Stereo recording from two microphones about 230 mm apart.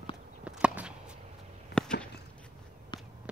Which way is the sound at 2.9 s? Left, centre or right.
Left.